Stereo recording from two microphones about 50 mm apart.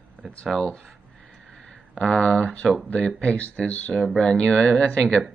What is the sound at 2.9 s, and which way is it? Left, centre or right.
Speech, left.